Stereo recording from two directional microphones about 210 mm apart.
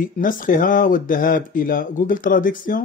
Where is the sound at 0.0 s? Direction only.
40° left (ahead or behind).